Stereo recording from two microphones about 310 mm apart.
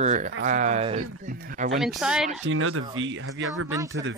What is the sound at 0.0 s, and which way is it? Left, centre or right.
Speech, right.